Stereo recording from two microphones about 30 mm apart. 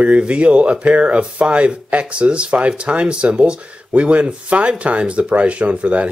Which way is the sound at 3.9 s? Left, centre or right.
Right.